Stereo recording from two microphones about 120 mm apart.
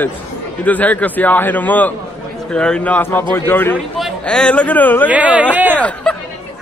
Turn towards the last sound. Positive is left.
turn(degrees=10)  # may be behind; listen again after turning